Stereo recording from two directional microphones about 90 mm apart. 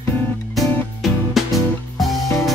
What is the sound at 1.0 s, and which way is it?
Music, centre (ahead or behind).